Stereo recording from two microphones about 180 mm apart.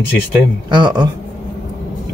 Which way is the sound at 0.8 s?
25° right (ahead or behind).